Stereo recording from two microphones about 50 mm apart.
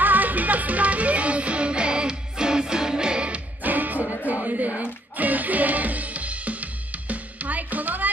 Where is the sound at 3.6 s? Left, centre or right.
Right.